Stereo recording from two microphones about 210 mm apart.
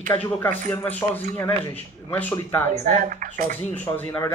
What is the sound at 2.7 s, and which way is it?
Speech, 35° right (ahead or behind).